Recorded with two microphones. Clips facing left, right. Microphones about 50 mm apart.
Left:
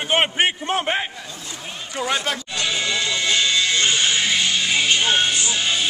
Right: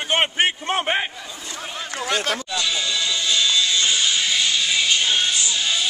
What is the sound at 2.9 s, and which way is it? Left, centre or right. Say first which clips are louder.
Music: left 2 dB; left.